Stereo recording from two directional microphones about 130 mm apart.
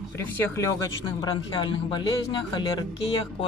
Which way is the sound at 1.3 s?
40° left (ahead or behind).